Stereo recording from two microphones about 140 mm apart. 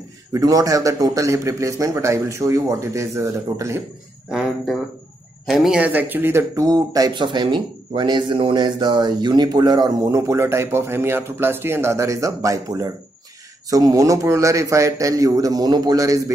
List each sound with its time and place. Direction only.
0.3 s speech: 25° right (ahead or behind)
4.3 s speech: 5° right (ahead or behind); by 16.2 s 25° right (ahead or behind)